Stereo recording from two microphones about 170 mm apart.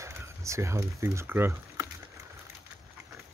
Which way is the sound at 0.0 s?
15° right (ahead or behind).